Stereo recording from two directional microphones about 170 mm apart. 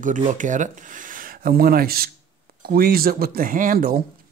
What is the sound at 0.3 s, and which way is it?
Speech, 50° right (ahead or behind).